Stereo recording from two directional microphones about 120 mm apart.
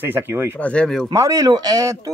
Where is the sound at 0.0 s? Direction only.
20° right (ahead or behind).